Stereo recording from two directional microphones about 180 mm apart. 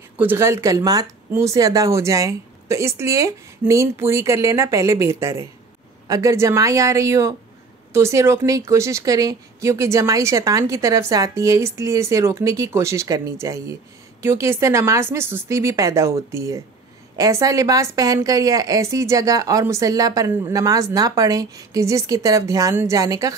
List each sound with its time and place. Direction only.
0.2 s a woman's voice: 10° right (ahead or behind)